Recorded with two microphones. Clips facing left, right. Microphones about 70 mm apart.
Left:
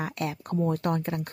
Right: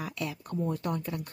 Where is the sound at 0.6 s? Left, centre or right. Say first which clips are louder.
Left 5 dB; left.